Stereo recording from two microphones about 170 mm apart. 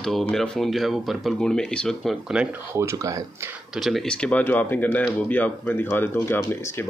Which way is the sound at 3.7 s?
Centre (ahead or behind).